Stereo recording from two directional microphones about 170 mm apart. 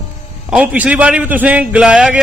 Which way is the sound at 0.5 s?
10° right (ahead or behind).